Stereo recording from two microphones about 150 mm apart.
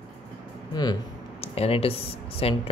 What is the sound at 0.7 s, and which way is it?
Speech, 30° left (ahead or behind).